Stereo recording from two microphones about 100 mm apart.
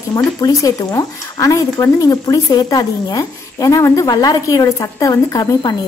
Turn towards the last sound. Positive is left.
turn(degrees=40)  # may be behind; listen again after turning